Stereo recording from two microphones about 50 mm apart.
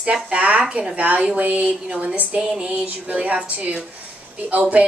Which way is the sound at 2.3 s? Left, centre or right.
Centre.